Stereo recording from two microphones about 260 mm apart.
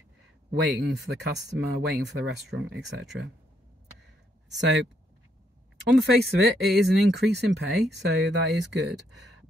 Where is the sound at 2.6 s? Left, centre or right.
Right.